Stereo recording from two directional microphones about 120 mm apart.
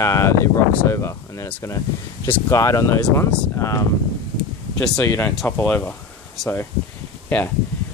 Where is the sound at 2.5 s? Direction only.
25° left (ahead or behind).